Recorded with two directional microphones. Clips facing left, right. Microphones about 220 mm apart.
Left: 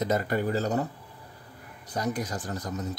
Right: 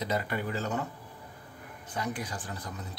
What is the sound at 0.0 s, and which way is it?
Speech, 45° left (ahead or behind).